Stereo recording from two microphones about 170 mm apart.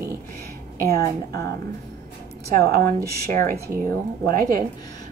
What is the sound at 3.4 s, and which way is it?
Speech, 60° right (ahead or behind).